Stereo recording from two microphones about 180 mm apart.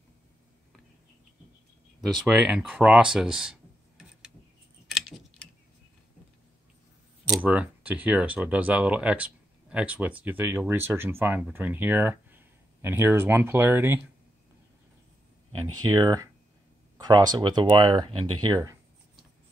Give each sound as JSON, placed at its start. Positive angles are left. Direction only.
{"t": 2.0, "sound": "speech", "side_deg": 0}
{"t": 4.8, "sound": "tick-tock", "side_deg": 0}
{"t": 7.4, "sound": "speech", "side_deg": -10}
{"t": 15.9, "sound": "speech", "side_deg": -20}